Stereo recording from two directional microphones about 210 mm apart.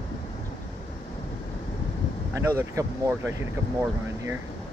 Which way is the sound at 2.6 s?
15° right (ahead or behind).